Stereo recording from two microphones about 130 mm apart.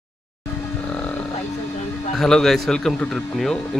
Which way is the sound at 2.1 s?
5° left (ahead or behind).